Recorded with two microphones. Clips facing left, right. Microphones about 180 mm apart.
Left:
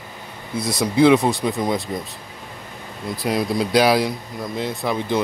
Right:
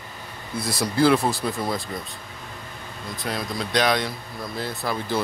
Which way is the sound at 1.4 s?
15° left (ahead or behind).